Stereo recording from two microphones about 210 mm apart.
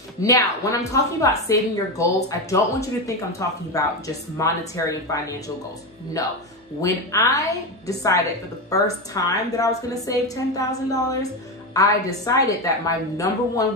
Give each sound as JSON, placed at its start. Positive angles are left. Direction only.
{"t": 0.2, "sound": "a woman's voice", "side_deg": 15}
{"t": 6.8, "sound": "a woman's voice", "side_deg": 15}